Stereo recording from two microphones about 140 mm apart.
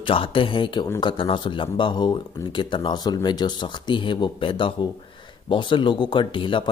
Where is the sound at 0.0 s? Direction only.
40° left (ahead or behind).